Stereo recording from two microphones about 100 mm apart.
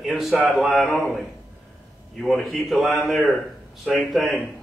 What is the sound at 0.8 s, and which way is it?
Speech, 20° left (ahead or behind).